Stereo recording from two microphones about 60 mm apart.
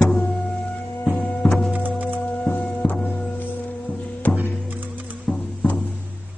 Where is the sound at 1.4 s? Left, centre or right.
Centre.